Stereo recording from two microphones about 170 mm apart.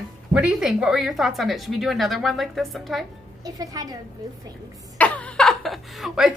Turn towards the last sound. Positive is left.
turn(degrees=0)  # may be behind; listen again after turning